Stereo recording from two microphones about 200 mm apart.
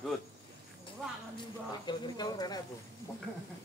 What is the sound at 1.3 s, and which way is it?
Speech, 20° left (ahead or behind).